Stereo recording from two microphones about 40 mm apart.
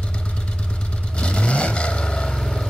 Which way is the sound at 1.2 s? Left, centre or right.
Left.